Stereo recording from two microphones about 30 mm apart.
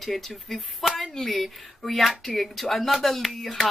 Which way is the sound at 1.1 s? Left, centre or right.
Centre.